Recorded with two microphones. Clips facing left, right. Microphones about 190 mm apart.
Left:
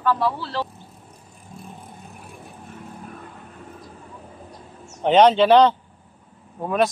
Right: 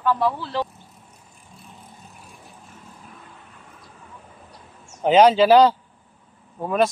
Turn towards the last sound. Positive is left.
turn(degrees=0)  # may be behind; listen again after turning